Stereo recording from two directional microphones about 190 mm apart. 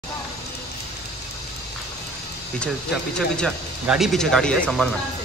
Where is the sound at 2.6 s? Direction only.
5° left (ahead or behind).